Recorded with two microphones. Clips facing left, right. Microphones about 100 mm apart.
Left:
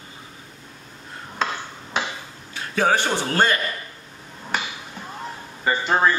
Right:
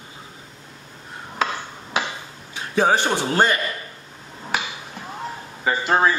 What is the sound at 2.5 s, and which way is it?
A man's voice, 20° right (ahead or behind).